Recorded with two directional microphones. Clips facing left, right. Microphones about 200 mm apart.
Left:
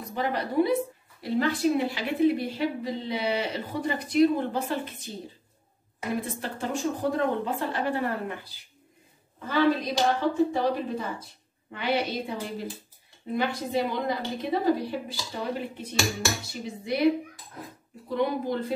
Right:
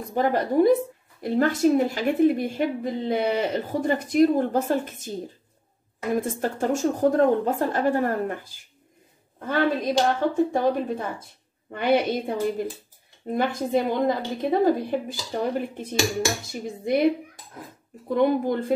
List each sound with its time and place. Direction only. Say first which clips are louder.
0.1 s a woman's voice: right 6 dB; 45° right (ahead or behind)
6.1 s a woman's voice: right 8 dB; 45° right (ahead or behind)
18.0 s a woman's voice: right 6 dB; 50° right (ahead or behind)